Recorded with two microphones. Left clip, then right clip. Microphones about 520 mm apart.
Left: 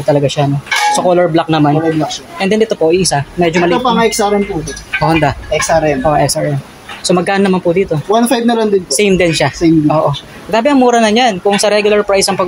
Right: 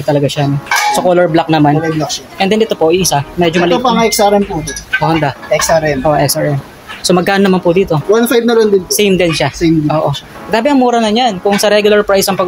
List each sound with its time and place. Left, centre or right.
0.0 s speech: right